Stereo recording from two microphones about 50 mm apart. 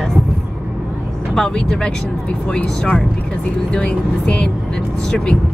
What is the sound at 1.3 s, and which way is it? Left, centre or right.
Speech, centre.